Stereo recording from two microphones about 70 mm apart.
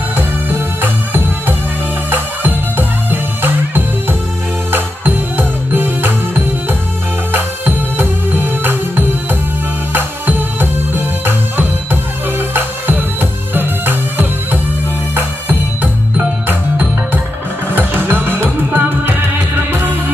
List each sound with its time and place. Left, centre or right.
0.1 s music: right
16.4 s music: right